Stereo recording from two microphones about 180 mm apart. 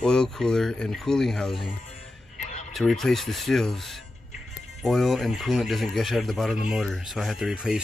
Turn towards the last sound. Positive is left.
turn(degrees=-5)  # may be behind; listen again after turning